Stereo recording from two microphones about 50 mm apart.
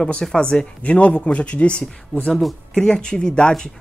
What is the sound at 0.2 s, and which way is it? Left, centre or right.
Speech, centre.